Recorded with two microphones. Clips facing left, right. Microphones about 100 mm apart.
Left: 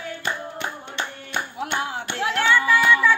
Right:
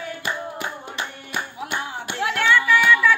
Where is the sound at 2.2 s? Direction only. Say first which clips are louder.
Right 1 dB; 30° left (ahead or behind).